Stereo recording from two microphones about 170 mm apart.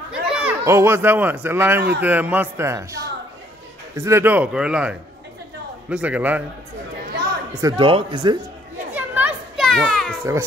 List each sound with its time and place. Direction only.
0.1 s speech: 10° right (ahead or behind)
7.6 s speech: 30° right (ahead or behind)
8.9 s children playing: 10° right (ahead or behind)
9.7 s children playing: centre (ahead or behind)